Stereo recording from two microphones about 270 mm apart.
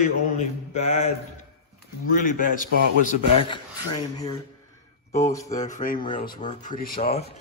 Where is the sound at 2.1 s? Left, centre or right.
Left.